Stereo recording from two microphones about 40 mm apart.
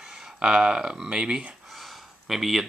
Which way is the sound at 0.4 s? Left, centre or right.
Right.